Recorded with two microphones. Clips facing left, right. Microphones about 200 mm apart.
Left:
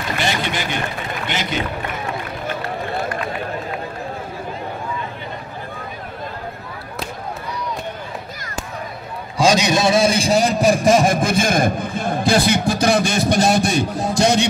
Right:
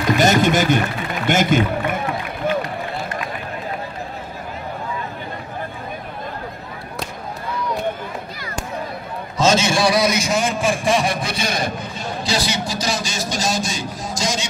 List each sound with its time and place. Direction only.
0.2 s a sound: 45° right (ahead or behind)
1.2 s a man's voice: 50° right (ahead or behind)
2.4 s run: 55° right (ahead or behind)
9.4 s a man's voice: 15° left (ahead or behind); by 14.5 s 60° left (ahead or behind)